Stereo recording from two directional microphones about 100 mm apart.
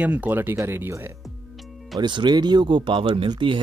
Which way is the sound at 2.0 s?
50° right (ahead or behind).